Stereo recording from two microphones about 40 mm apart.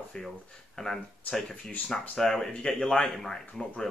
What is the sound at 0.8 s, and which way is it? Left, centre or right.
Speech, centre.